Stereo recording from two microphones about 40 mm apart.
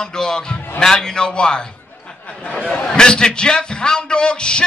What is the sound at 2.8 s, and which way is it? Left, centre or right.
A man's voice, centre.